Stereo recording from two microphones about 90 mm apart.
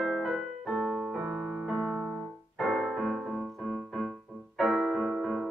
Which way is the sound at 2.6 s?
5° left (ahead or behind).